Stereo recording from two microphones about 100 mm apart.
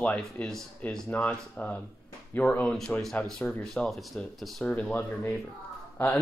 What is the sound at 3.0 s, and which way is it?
Speech, 5° left (ahead or behind).